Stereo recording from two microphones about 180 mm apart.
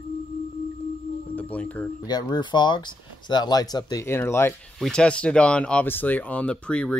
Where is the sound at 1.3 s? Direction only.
10° left (ahead or behind).